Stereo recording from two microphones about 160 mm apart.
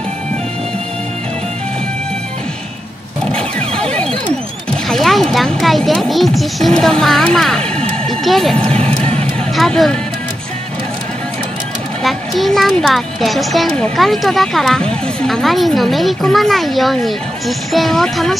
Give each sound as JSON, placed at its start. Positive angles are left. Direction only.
{"t": 3.3, "sound": "cacophony", "side_deg": 5}
{"t": 4.6, "sound": "speech", "side_deg": 0}
{"t": 8.6, "sound": "music", "side_deg": -40}
{"t": 9.6, "sound": "speech", "side_deg": 0}
{"t": 12.0, "sound": "speech", "side_deg": 0}